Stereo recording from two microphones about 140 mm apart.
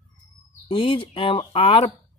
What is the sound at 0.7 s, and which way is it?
Speech, 40° left (ahead or behind).